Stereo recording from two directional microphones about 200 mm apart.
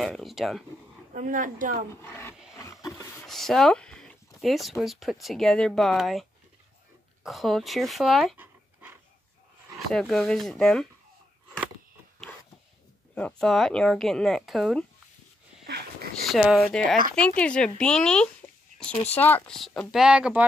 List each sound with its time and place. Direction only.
0.0 s speech: centre (ahead or behind)
1.1 s speech: 40° right (ahead or behind)
2.0 s speech: 10° left (ahead or behind)
2.5 s roaring cats: 15° left (ahead or behind)
3.3 s speech: centre (ahead or behind)
7.2 s speech: centre (ahead or behind)
9.9 s speech: centre (ahead or behind)
13.1 s speech: 5° left (ahead or behind)
15.6 s a sound: 55° right (ahead or behind)
16.3 s speech: centre (ahead or behind)